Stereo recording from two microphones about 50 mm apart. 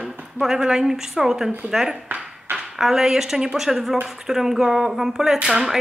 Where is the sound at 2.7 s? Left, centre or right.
Centre.